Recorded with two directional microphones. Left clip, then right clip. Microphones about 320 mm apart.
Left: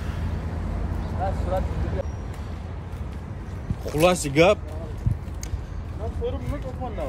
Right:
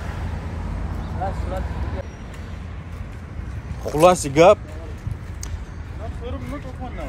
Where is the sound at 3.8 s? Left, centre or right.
Centre.